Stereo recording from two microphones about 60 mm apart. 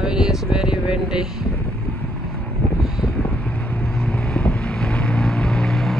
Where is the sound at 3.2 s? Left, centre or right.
Left.